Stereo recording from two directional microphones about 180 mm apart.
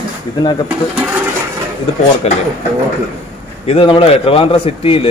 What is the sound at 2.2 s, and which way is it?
Speech, 35° left (ahead or behind).